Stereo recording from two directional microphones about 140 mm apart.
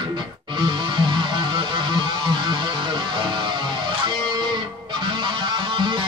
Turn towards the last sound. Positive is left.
turn(degrees=-35)  # may be behind; listen again after turning